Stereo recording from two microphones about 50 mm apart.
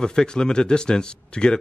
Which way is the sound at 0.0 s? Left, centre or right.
Centre.